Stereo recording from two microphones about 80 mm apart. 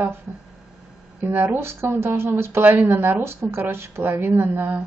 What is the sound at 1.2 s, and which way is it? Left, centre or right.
Speech, right.